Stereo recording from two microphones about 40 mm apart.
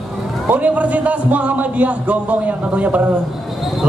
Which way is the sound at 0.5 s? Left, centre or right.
Right.